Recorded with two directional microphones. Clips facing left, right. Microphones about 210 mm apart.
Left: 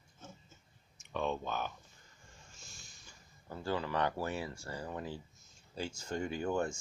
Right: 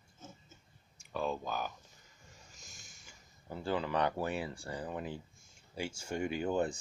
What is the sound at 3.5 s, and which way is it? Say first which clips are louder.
Speech: right 2 dB; 20° right (ahead or behind).